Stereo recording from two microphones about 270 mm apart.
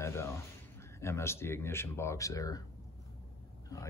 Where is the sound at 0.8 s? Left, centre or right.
Centre.